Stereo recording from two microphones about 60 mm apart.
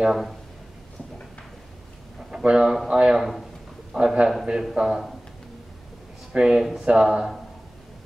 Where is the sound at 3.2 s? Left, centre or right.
Centre.